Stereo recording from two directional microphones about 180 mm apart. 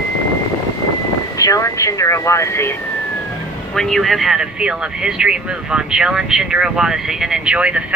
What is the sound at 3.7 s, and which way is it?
Speech, centre (ahead or behind).